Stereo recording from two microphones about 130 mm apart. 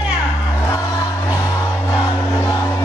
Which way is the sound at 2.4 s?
25° left (ahead or behind).